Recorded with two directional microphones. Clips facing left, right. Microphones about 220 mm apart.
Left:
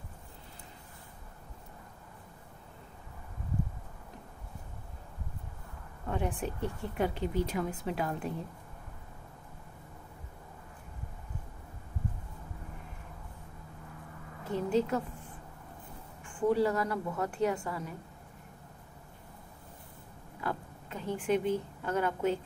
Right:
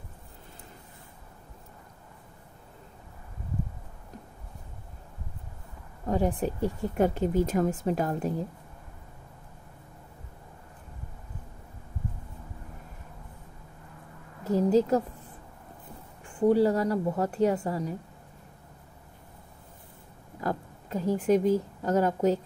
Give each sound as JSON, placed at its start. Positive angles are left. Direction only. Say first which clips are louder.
{"t": 6.0, "sound": "speech", "louder": "right 7 dB", "side_deg": -35}
{"t": 14.4, "sound": "a sound", "louder": "right 7 dB", "side_deg": -40}
{"t": 16.3, "sound": "speech", "louder": "right 5 dB", "side_deg": -35}
{"t": 20.3, "sound": "speech", "louder": "right 5 dB", "side_deg": -40}